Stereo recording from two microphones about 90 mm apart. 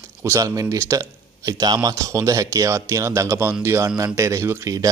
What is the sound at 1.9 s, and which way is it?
Speech, 35° right (ahead or behind).